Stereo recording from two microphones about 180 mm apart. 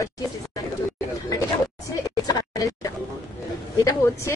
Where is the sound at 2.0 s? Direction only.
20° left (ahead or behind).